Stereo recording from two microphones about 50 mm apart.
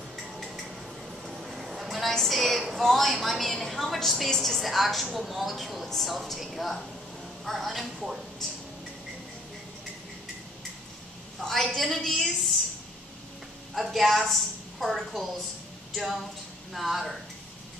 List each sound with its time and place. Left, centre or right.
1.2 s a woman's voice: centre
11.4 s a woman's voice: centre
13.9 s a woman's voice: centre